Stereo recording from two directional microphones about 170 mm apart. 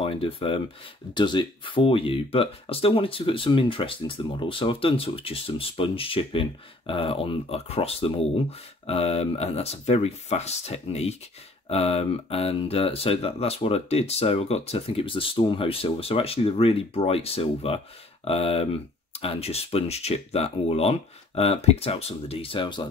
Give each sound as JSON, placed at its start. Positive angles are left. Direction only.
{"t": 0.0, "sound": "speech", "side_deg": 35}